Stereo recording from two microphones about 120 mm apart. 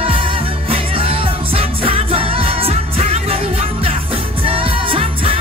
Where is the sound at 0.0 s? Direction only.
50° right (ahead or behind).